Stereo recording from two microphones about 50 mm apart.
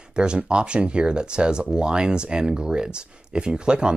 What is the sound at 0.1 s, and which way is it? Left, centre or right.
Speech, centre.